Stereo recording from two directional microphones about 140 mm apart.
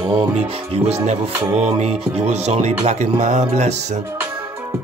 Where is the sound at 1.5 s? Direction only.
50° right (ahead or behind).